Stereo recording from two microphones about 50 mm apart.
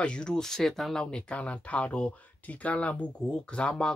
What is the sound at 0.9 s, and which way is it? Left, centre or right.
Speech, centre.